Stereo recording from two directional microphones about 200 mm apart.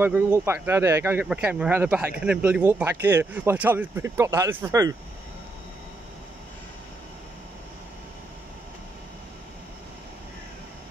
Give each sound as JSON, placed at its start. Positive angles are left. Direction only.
{"t": 0.0, "sound": "speech", "side_deg": -10}